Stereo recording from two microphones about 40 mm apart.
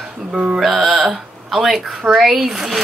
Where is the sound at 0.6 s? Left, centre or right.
Centre.